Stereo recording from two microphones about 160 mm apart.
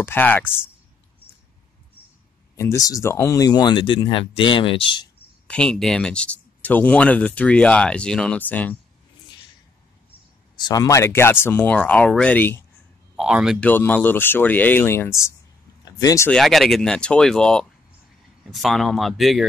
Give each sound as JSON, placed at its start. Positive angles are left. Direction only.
{"t": 0.0, "sound": "speech", "side_deg": 10}
{"t": 2.5, "sound": "speech", "side_deg": 20}
{"t": 5.5, "sound": "speech", "side_deg": 5}
{"t": 10.7, "sound": "speech", "side_deg": 20}
{"t": 13.1, "sound": "speech", "side_deg": -5}
{"t": 13.6, "sound": "speech", "side_deg": 10}
{"t": 15.8, "sound": "a sound", "side_deg": 25}
{"t": 16.3, "sound": "speech", "side_deg": 0}